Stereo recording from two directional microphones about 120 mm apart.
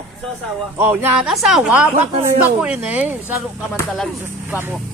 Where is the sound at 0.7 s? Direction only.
15° right (ahead or behind).